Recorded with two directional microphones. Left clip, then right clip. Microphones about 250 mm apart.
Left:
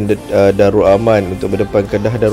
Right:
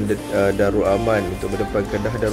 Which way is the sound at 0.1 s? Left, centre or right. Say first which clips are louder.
Left 9 dB; left.